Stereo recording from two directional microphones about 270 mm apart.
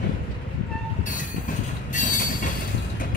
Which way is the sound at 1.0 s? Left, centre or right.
Left.